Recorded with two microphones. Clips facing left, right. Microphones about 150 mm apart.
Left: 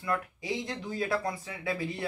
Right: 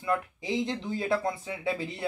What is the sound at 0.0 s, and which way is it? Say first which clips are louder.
Speech: right 3 dB; 20° right (ahead or behind).